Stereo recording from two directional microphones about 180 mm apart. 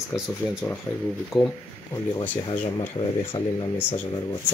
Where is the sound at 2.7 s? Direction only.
25° left (ahead or behind).